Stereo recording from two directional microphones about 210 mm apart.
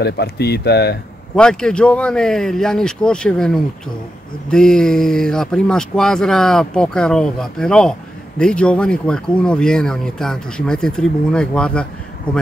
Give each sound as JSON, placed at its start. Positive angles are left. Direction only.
{"t": 0.0, "sound": "speech", "side_deg": 50}
{"t": 1.3, "sound": "speech", "side_deg": 5}